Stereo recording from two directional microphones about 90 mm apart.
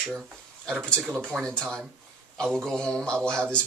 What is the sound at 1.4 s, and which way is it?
Speech, 10° left (ahead or behind).